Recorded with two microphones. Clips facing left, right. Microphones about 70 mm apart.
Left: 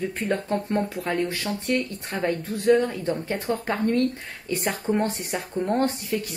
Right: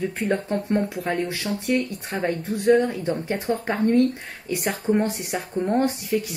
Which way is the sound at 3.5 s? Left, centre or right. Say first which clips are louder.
Right 4 dB; centre.